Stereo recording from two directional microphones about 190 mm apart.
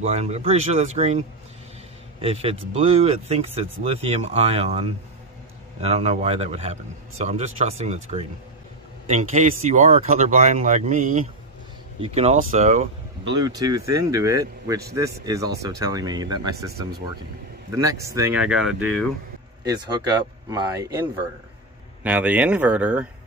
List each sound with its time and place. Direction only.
0.0 s speech: 35° right (ahead or behind)
2.2 s speech: 30° right (ahead or behind)
13.4 s speech: 20° right (ahead or behind)
17.7 s speech: 15° right (ahead or behind)
19.6 s speech: 20° right (ahead or behind)
22.0 s speech: 10° right (ahead or behind)